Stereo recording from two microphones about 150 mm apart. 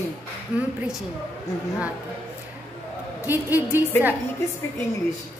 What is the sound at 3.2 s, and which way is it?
Speech, 10° right (ahead or behind).